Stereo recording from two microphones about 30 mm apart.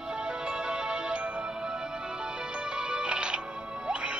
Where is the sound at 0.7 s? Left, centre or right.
Right.